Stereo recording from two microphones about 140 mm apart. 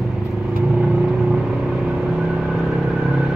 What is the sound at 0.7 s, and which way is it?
Vehicle, 5° right (ahead or behind).